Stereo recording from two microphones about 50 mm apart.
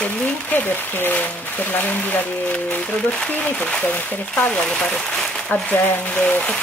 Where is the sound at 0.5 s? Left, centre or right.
Left.